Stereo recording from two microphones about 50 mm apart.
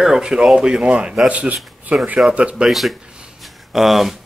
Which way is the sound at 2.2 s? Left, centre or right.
Centre.